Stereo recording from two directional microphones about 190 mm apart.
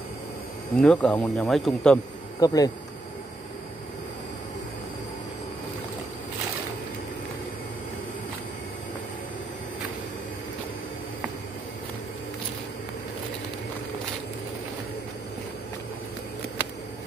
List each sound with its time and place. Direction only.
0.7 s speech: 5° left (ahead or behind)
2.4 s speech: 20° left (ahead or behind)